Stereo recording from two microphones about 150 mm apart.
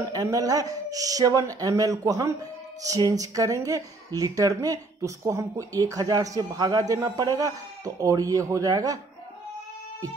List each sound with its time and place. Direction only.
0.1 s speech: 20° right (ahead or behind)